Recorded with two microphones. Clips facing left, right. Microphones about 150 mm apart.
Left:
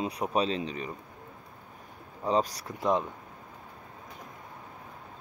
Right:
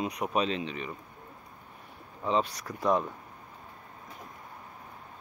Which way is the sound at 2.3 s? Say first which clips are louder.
Left 1 dB; 35° left (ahead or behind).